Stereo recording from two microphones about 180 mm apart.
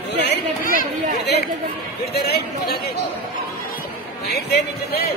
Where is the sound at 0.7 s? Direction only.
65° left (ahead or behind).